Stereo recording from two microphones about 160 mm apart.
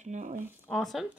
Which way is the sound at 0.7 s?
Centre (ahead or behind).